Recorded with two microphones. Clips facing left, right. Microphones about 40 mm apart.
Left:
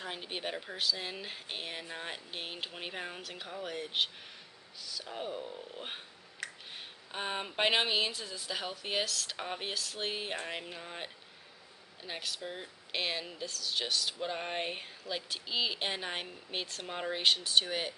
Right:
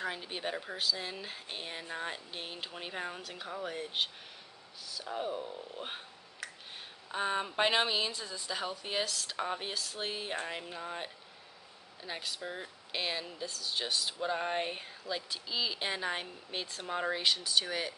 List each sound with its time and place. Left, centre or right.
0.1 s speech: centre
0.6 s speech: centre
0.9 s speech: centre
4.8 s speech: centre
5.1 s speech: centre
8.1 s speech: centre
9.0 s speech: centre
9.4 s speech: centre
9.8 s speech: centre
10.0 s speech: centre
12.2 s speech: centre
12.9 s speech: centre
13.5 s speech: centre
14.2 s speech: centre